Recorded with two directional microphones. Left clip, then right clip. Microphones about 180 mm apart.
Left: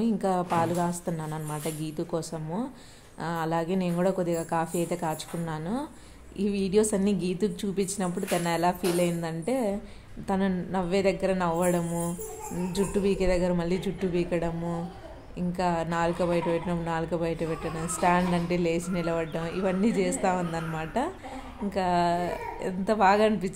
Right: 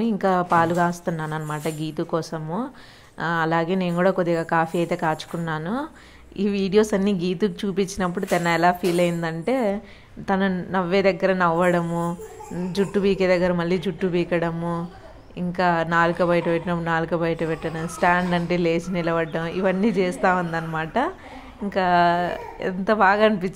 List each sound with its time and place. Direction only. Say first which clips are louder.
0.0 s a woman's voice: right 6 dB; 15° right (ahead or behind)